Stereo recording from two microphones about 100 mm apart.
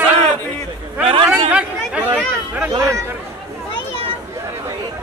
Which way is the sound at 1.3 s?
10° right (ahead or behind).